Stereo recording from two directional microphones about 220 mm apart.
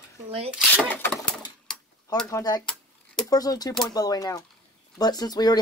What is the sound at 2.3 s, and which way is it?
Speech, 15° left (ahead or behind).